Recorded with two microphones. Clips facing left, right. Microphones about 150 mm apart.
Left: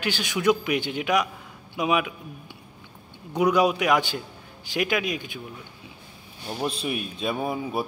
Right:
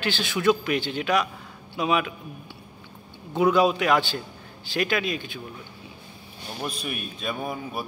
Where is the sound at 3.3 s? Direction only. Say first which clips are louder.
Right 1 dB; 15° left (ahead or behind).